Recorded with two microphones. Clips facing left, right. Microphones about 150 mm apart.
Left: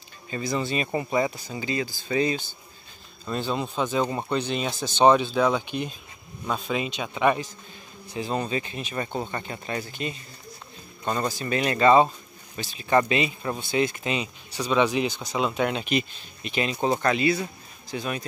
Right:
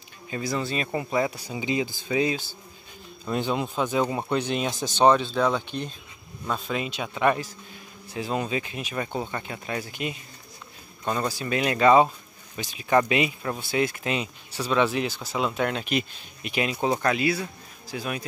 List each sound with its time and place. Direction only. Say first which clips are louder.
0.3 s speech: left 1 dB; 5° right (ahead or behind)
1.3 s speech: right 2 dB; 15° right (ahead or behind)
2.0 s speech: left 2 dB; 5° right (ahead or behind)
5.0 s speech: left 1 dB; 5° left (ahead or behind); by 10.2 s 10° right (ahead or behind)
11.3 s speech: even; 5° right (ahead or behind)